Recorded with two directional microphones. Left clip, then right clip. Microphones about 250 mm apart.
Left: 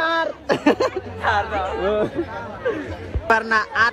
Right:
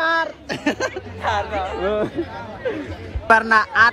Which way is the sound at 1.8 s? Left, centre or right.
Right.